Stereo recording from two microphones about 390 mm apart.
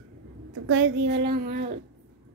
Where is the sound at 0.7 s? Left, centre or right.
Right.